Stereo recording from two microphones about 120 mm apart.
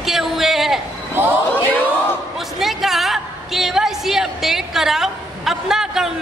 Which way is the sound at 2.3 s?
Centre (ahead or behind).